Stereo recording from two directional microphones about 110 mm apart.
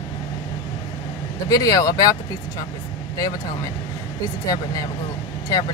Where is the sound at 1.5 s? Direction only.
35° left (ahead or behind).